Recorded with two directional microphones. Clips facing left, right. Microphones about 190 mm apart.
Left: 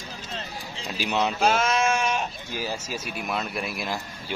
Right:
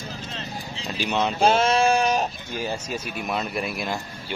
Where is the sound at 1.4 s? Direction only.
30° right (ahead or behind).